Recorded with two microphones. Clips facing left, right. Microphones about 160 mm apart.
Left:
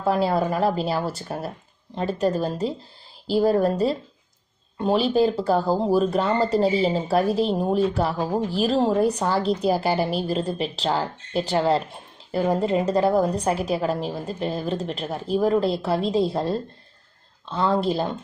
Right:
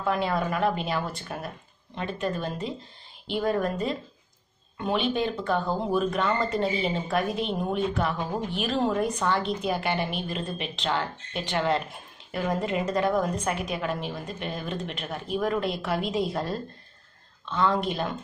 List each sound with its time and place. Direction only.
0.0 s speech: 35° left (ahead or behind)